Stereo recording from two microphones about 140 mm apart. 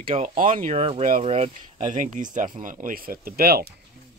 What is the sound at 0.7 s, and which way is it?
Speech, 45° right (ahead or behind).